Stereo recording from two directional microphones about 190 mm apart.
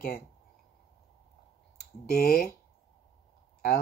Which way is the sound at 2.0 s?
55° left (ahead or behind).